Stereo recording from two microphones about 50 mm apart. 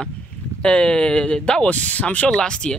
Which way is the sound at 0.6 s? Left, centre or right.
Left.